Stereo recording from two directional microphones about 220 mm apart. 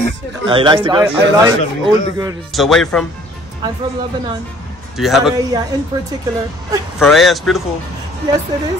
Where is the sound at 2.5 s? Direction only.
Centre (ahead or behind).